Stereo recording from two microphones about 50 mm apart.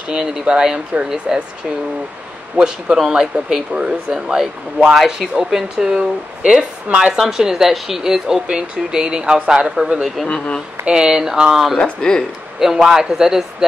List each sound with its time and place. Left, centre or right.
0.1 s speech: centre
2.6 s a man's voice: right
3.1 s speech: centre
4.9 s speech: centre
5.3 s speech: centre
10.2 s speech: left
10.9 s speech: centre
11.8 s speech: centre
12.5 s speech: centre